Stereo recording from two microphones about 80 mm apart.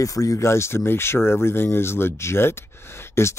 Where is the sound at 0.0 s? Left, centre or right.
Left.